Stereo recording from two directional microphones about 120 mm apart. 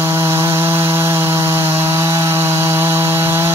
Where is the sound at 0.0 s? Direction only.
20° right (ahead or behind).